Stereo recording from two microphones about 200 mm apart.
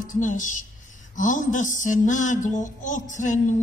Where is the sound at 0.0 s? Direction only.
40° left (ahead or behind).